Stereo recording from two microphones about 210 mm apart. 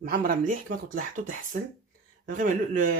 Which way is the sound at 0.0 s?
40° right (ahead or behind).